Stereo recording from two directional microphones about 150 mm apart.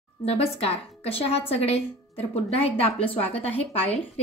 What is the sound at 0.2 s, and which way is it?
A woman's voice, 40° left (ahead or behind).